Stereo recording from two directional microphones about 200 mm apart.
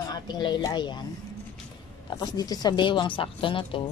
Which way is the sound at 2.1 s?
20° left (ahead or behind).